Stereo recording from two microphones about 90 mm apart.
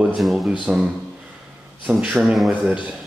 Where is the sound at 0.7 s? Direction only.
10° right (ahead or behind).